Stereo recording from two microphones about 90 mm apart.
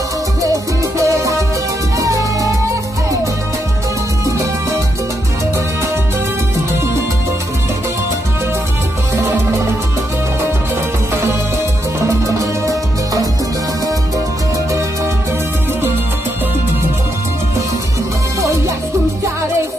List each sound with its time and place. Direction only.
0.4 s music: 35° right (ahead or behind)
12.1 s music: 40° right (ahead or behind)